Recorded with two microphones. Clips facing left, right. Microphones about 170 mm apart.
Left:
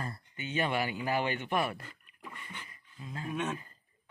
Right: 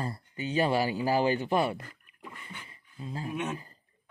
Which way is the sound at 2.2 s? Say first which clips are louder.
Right 1 dB; 10° right (ahead or behind).